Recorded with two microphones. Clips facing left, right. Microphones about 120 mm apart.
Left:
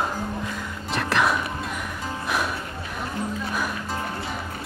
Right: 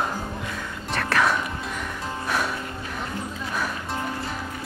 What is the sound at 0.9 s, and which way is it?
Speech, 5° left (ahead or behind).